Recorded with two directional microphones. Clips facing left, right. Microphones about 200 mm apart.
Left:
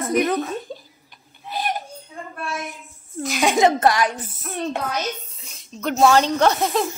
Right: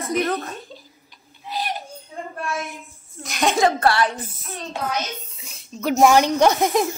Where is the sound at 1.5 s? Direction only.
50° left (ahead or behind).